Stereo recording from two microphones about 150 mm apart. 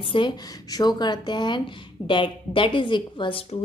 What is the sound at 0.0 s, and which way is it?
Speech, 35° left (ahead or behind).